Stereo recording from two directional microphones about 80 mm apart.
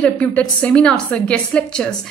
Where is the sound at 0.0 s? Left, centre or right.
Centre.